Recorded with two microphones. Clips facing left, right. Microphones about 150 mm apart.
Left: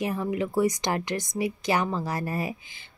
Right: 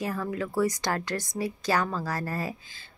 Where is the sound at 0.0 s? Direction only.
20° left (ahead or behind).